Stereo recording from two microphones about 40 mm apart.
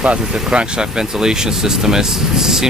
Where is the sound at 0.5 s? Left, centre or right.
Right.